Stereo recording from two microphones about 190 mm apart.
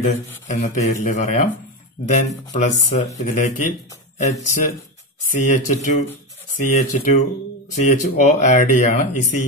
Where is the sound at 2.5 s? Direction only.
40° left (ahead or behind).